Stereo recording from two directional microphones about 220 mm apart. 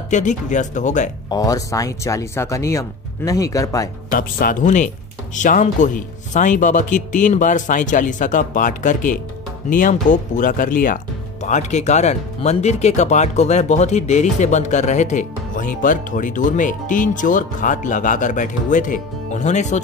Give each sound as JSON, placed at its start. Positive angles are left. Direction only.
{"t": 0.1, "sound": "speech", "side_deg": 35}
{"t": 1.3, "sound": "speech", "side_deg": 15}
{"t": 4.1, "sound": "speech", "side_deg": 40}